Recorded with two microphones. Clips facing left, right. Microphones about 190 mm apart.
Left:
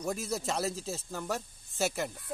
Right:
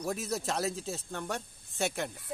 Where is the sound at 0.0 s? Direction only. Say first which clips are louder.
Even; centre (ahead or behind).